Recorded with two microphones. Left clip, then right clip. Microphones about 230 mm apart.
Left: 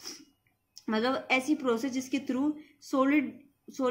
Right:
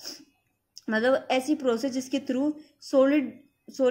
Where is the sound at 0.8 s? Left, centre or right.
Centre.